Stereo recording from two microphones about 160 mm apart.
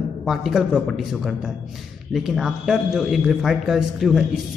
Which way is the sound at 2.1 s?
Centre (ahead or behind).